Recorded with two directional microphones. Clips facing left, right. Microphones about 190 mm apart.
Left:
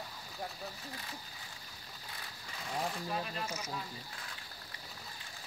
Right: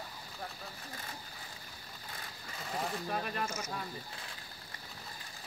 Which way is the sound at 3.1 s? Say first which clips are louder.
Right 2 dB; 55° right (ahead or behind).